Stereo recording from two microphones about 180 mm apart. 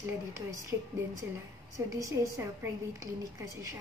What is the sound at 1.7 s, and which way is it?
Speech, 15° right (ahead or behind).